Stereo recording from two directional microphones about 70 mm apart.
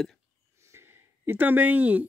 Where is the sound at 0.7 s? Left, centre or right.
Right.